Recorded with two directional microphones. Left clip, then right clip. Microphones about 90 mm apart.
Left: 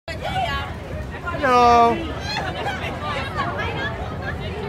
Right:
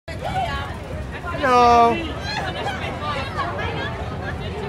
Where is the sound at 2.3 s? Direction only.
15° left (ahead or behind).